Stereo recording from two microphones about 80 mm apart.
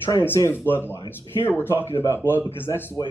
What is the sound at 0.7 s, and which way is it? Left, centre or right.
Speech, left.